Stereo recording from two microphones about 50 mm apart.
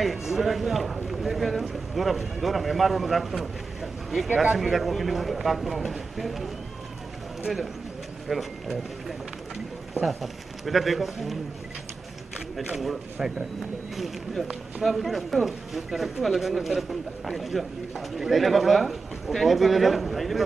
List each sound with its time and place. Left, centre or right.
0.0 s speech: centre
8.3 s speech: centre
9.9 s speech: centre
12.6 s speech: centre